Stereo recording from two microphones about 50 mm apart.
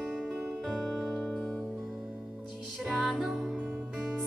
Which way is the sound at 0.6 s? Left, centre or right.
Centre.